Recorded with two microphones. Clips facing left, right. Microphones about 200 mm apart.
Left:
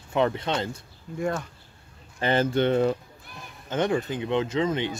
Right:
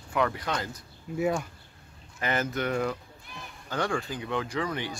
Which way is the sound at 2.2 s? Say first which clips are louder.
Left 7 dB; 30° left (ahead or behind).